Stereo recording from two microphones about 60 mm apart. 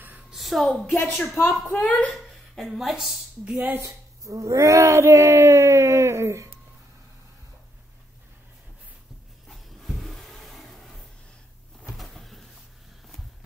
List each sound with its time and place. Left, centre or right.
0.3 s a woman's voice: centre
1.0 s a woman's voice: left
2.1 s a woman's voice: centre
3.4 s speech: right
3.8 s speech: right
9.5 s a sound: centre